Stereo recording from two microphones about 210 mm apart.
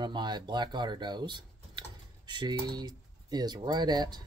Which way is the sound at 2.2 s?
20° right (ahead or behind).